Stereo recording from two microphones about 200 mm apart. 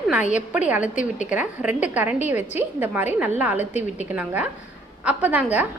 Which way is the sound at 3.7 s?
35° left (ahead or behind).